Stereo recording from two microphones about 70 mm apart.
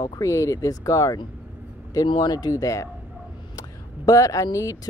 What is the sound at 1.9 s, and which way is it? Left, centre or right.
Speech, left.